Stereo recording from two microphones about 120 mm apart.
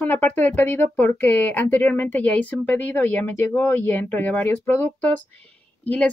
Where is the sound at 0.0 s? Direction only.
15° left (ahead or behind).